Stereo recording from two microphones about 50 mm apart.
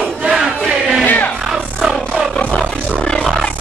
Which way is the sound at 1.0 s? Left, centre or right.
Left.